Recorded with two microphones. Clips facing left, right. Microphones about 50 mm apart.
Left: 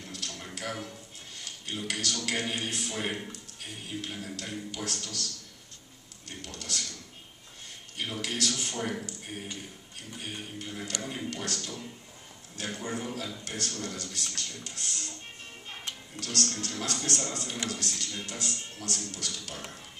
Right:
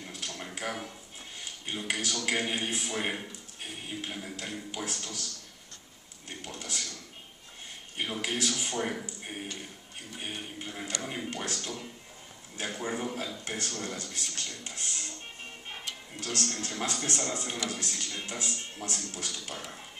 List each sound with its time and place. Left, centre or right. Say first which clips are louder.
0.0 s a sound: right 1 dB; centre
0.6 s a man's voice: even; centre
8.0 s a man's voice: right 1 dB; centre
10.1 s a man's voice: right 1 dB; right
16.2 s speech: left 1 dB; right